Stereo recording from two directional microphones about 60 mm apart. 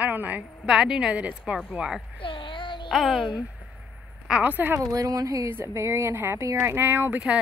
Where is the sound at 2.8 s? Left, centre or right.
Centre.